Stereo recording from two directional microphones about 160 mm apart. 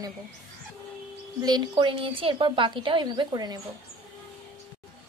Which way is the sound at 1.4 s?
30° right (ahead or behind).